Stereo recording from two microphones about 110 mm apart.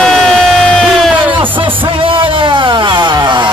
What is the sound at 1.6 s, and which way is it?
Music, 50° right (ahead or behind).